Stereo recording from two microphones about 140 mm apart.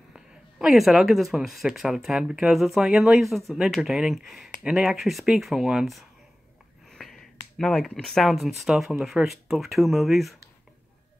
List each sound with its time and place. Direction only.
0.1 s speech: centre (ahead or behind)